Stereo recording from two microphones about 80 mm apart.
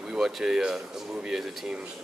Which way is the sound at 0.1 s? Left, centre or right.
Centre.